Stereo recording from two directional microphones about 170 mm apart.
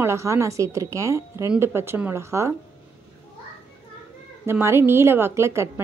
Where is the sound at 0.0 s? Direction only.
15° right (ahead or behind).